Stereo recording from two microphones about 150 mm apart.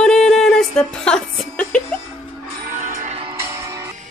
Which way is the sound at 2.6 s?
65° right (ahead or behind).